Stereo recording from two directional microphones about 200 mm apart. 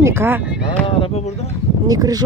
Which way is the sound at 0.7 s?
25° left (ahead or behind).